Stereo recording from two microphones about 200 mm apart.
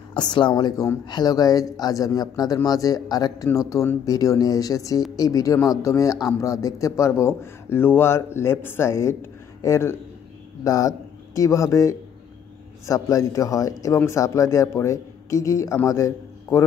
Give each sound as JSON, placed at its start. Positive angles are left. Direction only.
{"t": 0.1, "sound": "speech", "side_deg": 20}